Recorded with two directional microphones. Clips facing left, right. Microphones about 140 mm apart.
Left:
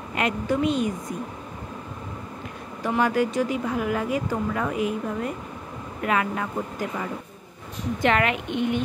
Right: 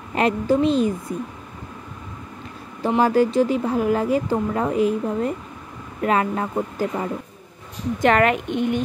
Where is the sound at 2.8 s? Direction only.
30° right (ahead or behind).